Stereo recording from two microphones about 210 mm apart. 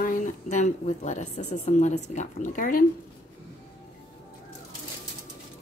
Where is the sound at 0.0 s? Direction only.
40° left (ahead or behind).